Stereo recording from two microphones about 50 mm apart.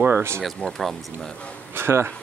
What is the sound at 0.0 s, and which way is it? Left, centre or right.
Speech, right.